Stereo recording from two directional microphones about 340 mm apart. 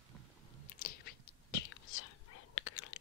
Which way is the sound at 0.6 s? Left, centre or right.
Left.